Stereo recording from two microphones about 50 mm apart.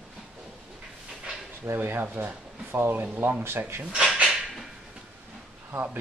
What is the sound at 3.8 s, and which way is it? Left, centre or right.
Speech, right.